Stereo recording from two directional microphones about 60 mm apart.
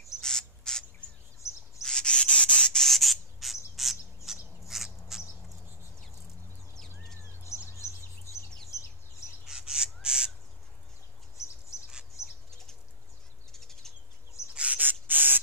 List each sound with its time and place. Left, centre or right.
0.2 s bird: centre
1.8 s rub: centre
2.8 s rub: centre
3.7 s bird: centre
4.3 s a sound: centre
4.6 s bird: centre
7.4 s bird: left
9.5 s crow: centre
13.5 s bird: centre
14.5 s bird: centre
14.8 s spray: right